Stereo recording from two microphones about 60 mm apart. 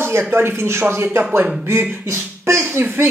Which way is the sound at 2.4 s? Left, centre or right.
Right.